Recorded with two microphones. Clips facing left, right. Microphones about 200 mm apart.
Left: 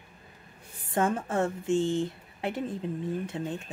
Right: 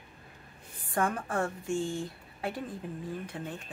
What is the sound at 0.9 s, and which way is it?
Speech, 25° left (ahead or behind).